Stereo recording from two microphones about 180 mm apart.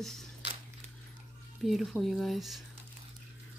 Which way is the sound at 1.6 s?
Centre (ahead or behind).